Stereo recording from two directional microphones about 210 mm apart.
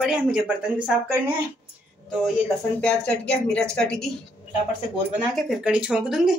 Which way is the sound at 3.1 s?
5° left (ahead or behind).